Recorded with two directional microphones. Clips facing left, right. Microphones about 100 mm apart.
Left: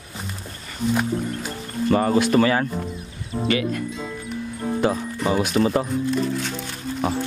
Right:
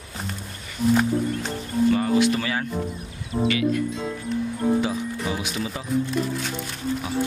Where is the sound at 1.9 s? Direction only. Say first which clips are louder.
Left 2 dB; 45° left (ahead or behind).